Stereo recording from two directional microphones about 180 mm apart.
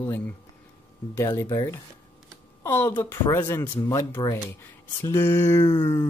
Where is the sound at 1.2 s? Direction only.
15° left (ahead or behind).